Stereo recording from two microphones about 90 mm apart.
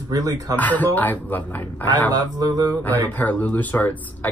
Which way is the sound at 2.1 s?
45° right (ahead or behind).